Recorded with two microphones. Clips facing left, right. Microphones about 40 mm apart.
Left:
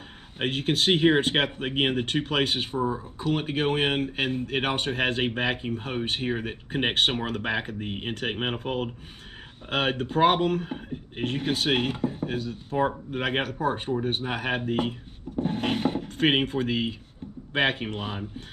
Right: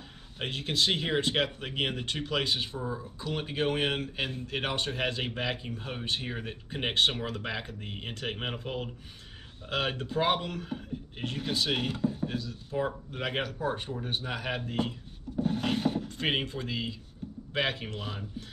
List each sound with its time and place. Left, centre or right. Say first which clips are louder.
0.4 s speech: left 4 dB; left
13.4 s speech: left 5 dB; left